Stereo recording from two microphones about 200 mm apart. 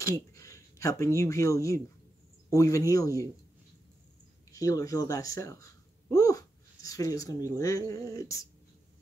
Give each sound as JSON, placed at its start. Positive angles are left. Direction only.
{"t": 0.0, "sound": "a man's voice", "side_deg": 15}
{"t": 4.5, "sound": "speech", "side_deg": 15}